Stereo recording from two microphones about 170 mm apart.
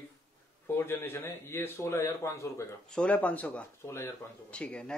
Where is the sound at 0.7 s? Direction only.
15° left (ahead or behind).